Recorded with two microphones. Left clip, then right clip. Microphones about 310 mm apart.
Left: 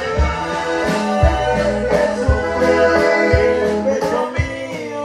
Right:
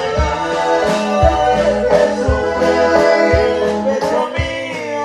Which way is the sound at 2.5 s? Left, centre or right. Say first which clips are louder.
Even; right.